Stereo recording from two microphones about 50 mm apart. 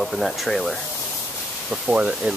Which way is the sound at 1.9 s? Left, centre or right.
Right.